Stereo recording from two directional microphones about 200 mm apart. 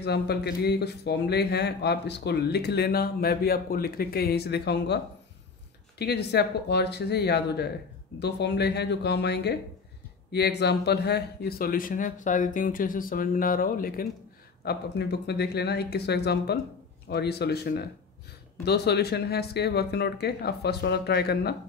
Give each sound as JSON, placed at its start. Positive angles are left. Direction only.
{"t": 0.0, "sound": "a man's voice", "side_deg": 55}